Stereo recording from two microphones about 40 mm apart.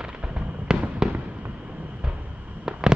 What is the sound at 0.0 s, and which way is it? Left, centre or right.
Fireworks, right.